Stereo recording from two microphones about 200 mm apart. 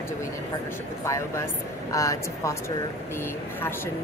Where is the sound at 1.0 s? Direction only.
15° left (ahead or behind).